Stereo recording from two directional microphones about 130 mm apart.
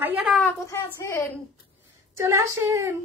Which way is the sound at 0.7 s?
25° left (ahead or behind).